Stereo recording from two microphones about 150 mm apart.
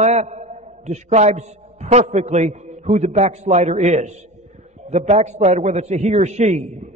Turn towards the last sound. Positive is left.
turn(degrees=-50)  # may be behind; listen again after turning